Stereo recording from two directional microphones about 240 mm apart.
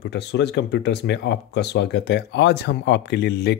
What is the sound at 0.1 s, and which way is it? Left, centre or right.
Speech, left.